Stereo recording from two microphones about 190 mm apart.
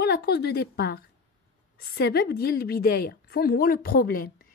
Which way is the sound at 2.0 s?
55° left (ahead or behind).